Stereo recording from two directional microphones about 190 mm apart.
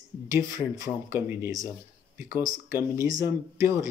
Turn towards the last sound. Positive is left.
turn(degrees=-15)  # may be behind; listen again after turning